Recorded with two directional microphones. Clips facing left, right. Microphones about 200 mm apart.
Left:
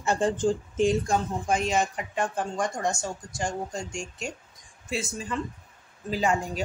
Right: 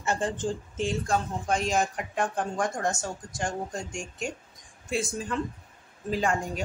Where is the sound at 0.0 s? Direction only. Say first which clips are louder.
Left 4 dB; 15° left (ahead or behind).